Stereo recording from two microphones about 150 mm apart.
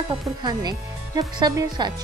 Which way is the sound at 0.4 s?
25° right (ahead or behind).